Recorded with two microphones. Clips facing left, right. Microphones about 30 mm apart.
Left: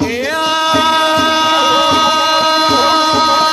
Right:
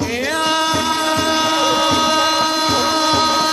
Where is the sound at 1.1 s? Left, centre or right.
Left.